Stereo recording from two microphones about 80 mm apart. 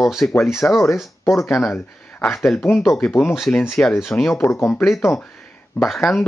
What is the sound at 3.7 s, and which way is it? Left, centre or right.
Speech, centre.